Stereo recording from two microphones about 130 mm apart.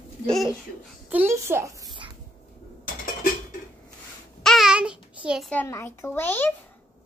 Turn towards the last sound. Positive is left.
turn(degrees=15)  # may be behind; listen again after turning